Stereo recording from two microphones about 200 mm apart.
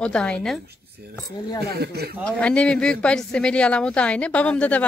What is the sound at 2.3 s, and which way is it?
A woman's voice, 5° left (ahead or behind).